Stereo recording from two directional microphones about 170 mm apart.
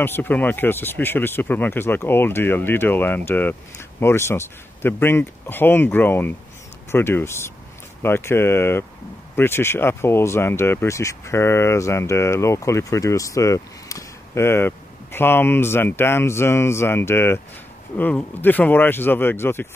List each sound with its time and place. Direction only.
0.0 s speech: 10° left (ahead or behind)